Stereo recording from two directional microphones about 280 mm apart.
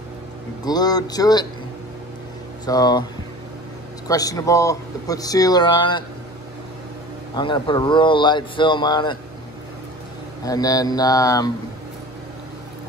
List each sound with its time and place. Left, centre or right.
0.7 s speech: centre
2.6 s speech: centre
4.1 s speech: centre
7.3 s speech: centre
10.4 s speech: centre